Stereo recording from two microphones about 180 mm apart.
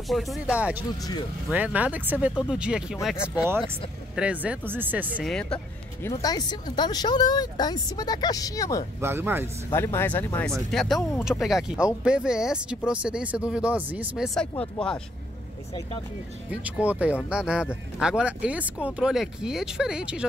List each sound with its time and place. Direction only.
0.1 s speech: centre (ahead or behind)
5.2 s speech: 5° left (ahead or behind)
6.0 s speech: 20° left (ahead or behind)
9.0 s speech: 10° right (ahead or behind)
9.7 s speech: 15° left (ahead or behind)
16.7 s speech: 5° right (ahead or behind)